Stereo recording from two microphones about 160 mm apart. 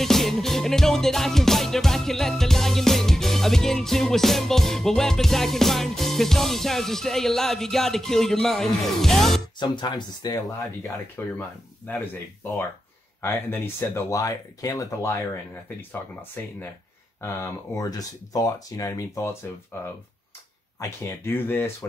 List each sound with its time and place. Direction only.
0.0 s music: centre (ahead or behind)
9.6 s speech: 30° left (ahead or behind)
20.8 s speech: 15° left (ahead or behind)